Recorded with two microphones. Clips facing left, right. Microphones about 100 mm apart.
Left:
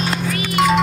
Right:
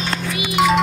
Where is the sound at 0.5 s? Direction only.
Centre (ahead or behind).